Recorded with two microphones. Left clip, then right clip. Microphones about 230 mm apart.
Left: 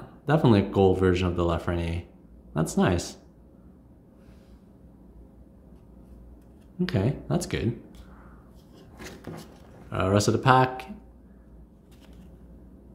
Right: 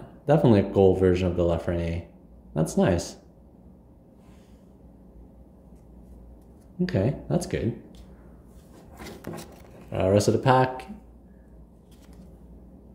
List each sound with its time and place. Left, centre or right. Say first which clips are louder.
0.2 s speech: right 2 dB; centre
6.9 s speech: right 2 dB; centre
9.8 s speech: right 3 dB; centre